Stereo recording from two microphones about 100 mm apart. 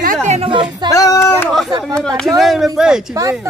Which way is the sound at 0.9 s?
35° left (ahead or behind).